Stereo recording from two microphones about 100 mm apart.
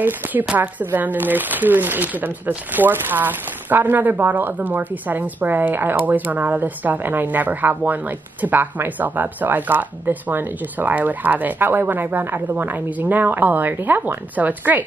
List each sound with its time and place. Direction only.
0.0 s speech: 15° right (ahead or behind)